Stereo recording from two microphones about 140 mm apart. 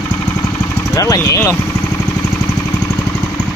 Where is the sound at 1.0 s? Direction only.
25° left (ahead or behind).